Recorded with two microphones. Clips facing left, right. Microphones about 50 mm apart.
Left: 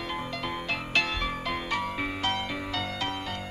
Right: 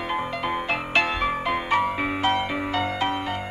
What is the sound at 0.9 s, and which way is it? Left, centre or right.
Music, right.